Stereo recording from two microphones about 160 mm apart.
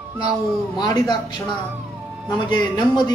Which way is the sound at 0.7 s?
25° left (ahead or behind).